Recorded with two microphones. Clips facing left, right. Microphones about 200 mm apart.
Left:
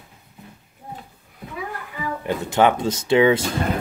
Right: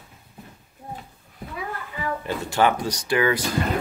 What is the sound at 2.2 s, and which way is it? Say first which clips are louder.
Speech: left 4 dB; 20° left (ahead or behind).